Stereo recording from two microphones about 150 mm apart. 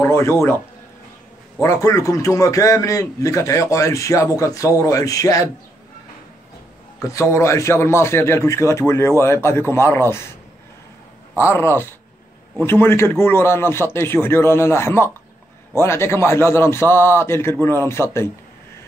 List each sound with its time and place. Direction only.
0.0 s a man's voice: 15° left (ahead or behind)
1.6 s a man's voice: 20° left (ahead or behind)
7.0 s a man's voice: 20° left (ahead or behind)
11.3 s a man's voice: 15° left (ahead or behind)